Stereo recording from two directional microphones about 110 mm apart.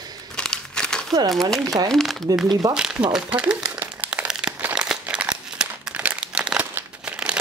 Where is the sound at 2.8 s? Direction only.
5° right (ahead or behind).